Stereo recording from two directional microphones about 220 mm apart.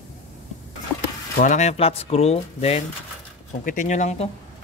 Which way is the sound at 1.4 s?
35° left (ahead or behind).